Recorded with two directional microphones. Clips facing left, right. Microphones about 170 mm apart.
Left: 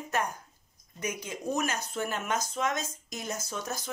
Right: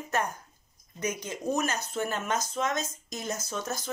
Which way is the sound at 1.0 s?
5° left (ahead or behind).